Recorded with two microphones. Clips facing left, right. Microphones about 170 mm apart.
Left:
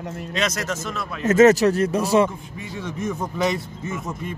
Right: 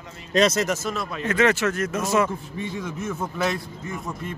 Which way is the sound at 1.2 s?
40° left (ahead or behind).